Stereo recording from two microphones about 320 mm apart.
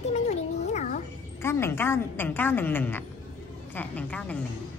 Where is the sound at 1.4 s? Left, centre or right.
Centre.